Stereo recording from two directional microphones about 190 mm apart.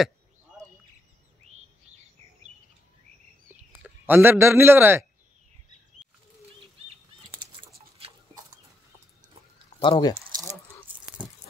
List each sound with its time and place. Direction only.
3.8 s a man's voice: 10° right (ahead or behind)
9.8 s speech: 25° left (ahead or behind)